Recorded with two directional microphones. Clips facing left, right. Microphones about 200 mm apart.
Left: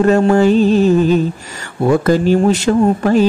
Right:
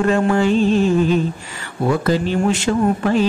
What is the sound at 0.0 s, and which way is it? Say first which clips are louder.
Speech: left 5 dB; 40° left (ahead or behind).